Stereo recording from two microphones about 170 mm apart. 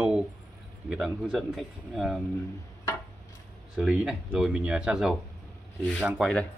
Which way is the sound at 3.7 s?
5° right (ahead or behind).